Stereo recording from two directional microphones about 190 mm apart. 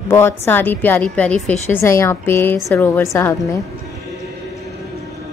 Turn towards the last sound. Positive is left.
turn(degrees=0)  # may be behind; listen again after turning